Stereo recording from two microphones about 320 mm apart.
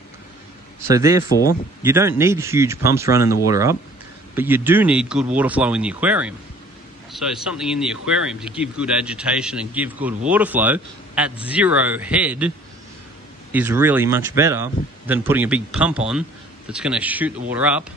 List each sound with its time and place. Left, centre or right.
0.7 s speech: centre